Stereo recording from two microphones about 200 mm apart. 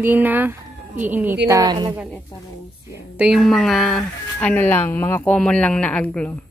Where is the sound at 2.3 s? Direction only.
25° left (ahead or behind).